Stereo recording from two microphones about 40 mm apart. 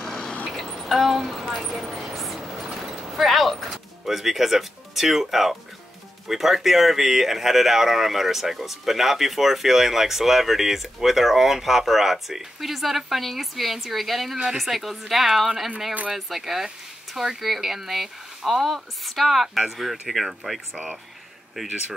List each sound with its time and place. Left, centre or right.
0.0 s vehicle: centre
0.5 s a sound: centre
3.1 s a woman's voice: centre
20.7 s speech: right